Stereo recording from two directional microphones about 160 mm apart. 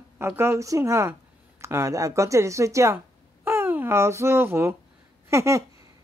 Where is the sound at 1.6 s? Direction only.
15° right (ahead or behind).